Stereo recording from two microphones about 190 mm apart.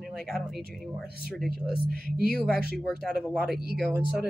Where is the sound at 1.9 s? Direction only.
50° right (ahead or behind).